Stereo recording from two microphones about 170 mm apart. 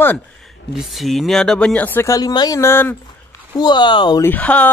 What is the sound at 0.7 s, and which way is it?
Speech, centre (ahead or behind).